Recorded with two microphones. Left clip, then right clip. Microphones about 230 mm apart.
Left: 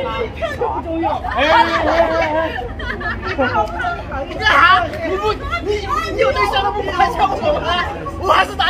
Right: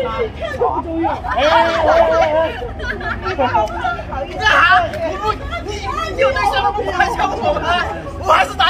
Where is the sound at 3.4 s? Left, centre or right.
Centre.